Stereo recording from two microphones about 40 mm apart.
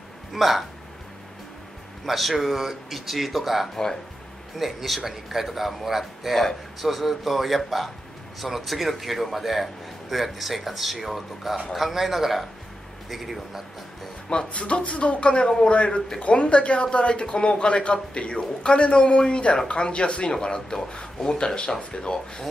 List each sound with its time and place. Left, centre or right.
0.3 s a man's voice: centre
2.0 s a man's voice: centre
3.7 s speech: centre
4.6 s a man's voice: centre
14.3 s speech: left